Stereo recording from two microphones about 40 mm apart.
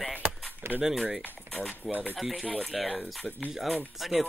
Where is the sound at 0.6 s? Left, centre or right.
Right.